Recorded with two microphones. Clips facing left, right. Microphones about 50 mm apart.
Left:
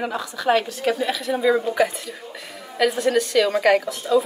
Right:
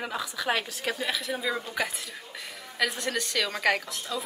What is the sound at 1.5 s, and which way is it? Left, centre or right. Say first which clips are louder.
Speech: left 12 dB; centre.